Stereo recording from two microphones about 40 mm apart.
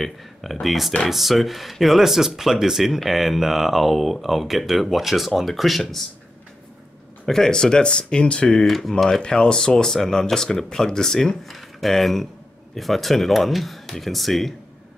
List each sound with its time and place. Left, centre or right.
0.0 s speech: centre
7.2 s speech: centre
8.6 s speech: centre
9.2 s speech: left; by 14.5 s centre